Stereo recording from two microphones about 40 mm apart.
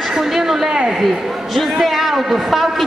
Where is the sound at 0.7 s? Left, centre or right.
Centre.